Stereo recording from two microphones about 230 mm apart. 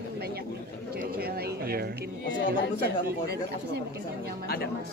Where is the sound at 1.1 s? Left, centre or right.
Right.